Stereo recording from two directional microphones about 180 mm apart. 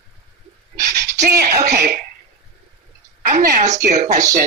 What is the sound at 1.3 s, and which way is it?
Speech, 60° right (ahead or behind).